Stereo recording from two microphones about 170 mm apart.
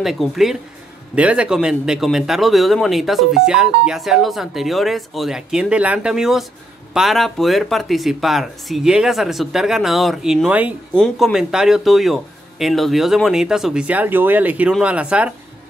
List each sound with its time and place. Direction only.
0.0 s a man's voice: centre (ahead or behind)